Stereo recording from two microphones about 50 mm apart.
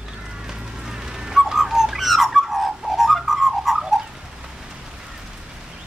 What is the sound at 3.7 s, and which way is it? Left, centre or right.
Bird, centre.